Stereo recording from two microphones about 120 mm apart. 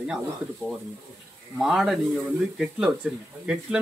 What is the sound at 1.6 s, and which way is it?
Speech, 5° right (ahead or behind).